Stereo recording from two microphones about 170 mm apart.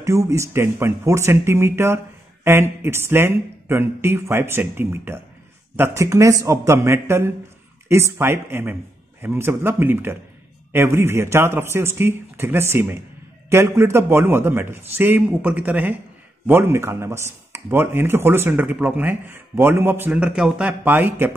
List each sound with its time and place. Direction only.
0.0 s speech: 20° right (ahead or behind)